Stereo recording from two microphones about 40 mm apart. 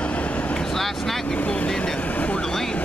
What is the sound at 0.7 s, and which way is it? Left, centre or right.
Vehicle, centre.